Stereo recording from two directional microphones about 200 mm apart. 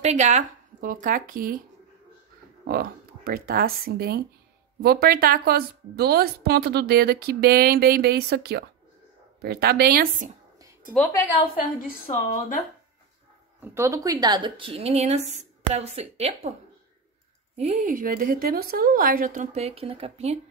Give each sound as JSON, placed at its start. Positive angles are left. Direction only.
{"t": 0.0, "sound": "a woman's voice", "side_deg": -35}
{"t": 2.6, "sound": "a woman's voice", "side_deg": -50}
{"t": 12.1, "sound": "speech", "side_deg": 40}
{"t": 13.6, "sound": "speech", "side_deg": -15}
{"t": 17.6, "sound": "a woman's voice", "side_deg": -35}